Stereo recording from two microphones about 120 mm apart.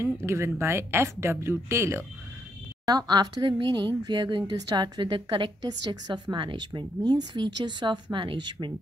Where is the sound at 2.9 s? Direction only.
35° right (ahead or behind).